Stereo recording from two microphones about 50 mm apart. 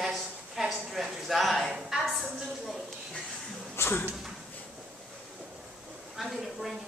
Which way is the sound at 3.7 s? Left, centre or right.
Left.